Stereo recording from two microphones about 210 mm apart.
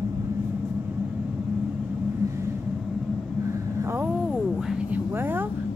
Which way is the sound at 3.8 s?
10° right (ahead or behind).